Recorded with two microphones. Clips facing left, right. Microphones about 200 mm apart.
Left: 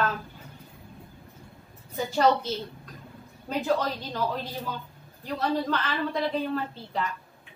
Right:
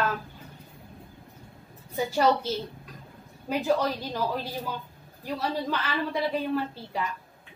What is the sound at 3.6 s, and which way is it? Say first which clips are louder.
A woman's voice: right 1 dB; 10° right (ahead or behind).